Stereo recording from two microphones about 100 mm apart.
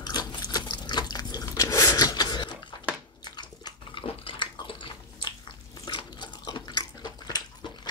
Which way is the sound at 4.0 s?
55° left (ahead or behind).